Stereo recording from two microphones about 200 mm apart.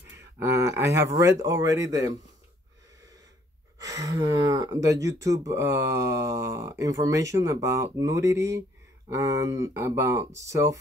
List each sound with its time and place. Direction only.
0.4 s speech: 15° right (ahead or behind)
3.8 s speech: 15° right (ahead or behind)